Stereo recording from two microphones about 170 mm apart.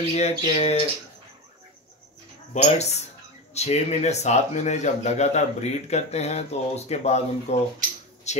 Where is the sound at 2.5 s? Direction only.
40° left (ahead or behind).